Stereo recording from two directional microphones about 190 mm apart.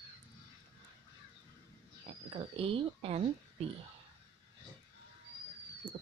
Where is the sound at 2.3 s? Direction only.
30° right (ahead or behind).